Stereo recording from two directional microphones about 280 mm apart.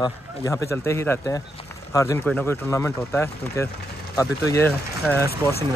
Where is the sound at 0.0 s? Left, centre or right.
Centre.